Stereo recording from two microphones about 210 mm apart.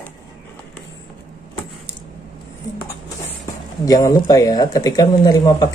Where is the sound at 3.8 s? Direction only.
15° left (ahead or behind).